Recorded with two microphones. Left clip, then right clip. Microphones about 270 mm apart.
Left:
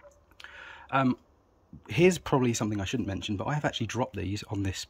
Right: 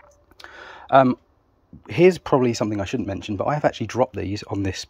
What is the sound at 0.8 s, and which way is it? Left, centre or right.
Speech, centre.